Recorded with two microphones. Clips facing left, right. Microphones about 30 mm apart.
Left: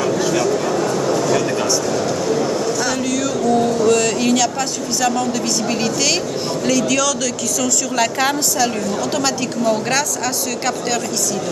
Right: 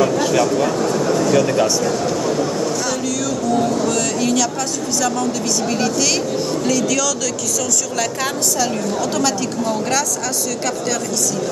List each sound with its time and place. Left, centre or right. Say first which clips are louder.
1.3 s speech: right 3 dB; centre
3.6 s a woman's voice: left 3 dB; centre